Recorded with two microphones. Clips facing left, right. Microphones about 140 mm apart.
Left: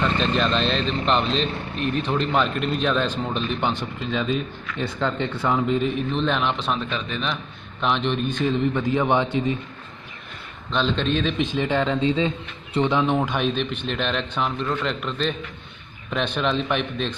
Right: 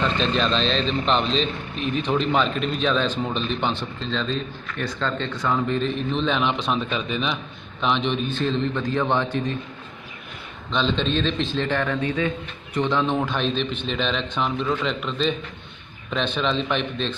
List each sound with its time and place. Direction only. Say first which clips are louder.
0.0 s a man's voice: even; 5° left (ahead or behind); by 5.6 s 25° left (ahead or behind)
5.7 s speech: left 1 dB; 10° left (ahead or behind)
8.4 s speech: left 2 dB; 15° left (ahead or behind)
10.7 s speech: even; 5° left (ahead or behind)